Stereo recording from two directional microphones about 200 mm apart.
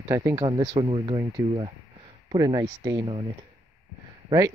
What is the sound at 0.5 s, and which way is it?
Speech, 30° right (ahead or behind).